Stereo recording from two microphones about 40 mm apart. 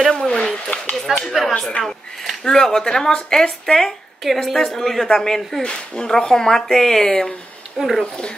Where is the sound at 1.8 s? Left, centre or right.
Centre.